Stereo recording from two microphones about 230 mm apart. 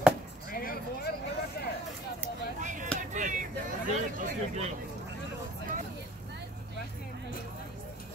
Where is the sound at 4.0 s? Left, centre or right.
Right.